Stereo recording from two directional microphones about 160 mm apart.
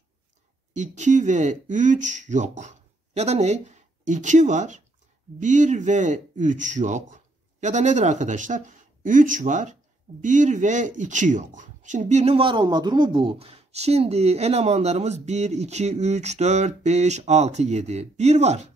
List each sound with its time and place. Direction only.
0.7 s speech: 50° right (ahead or behind)